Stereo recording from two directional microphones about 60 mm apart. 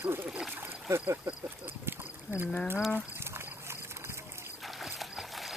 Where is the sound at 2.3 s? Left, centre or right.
Right.